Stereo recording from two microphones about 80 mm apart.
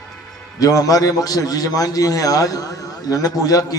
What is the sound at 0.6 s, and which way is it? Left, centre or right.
A man's voice, left.